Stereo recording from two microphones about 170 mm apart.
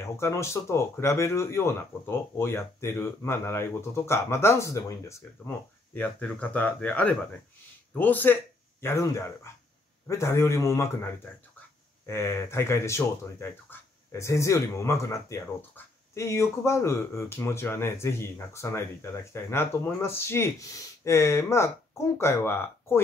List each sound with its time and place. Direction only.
0.0 s speech: 15° left (ahead or behind)
12.1 s speech: 15° left (ahead or behind)